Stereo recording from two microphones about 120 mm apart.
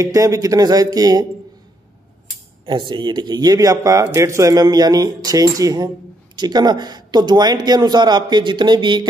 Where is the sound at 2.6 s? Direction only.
40° right (ahead or behind).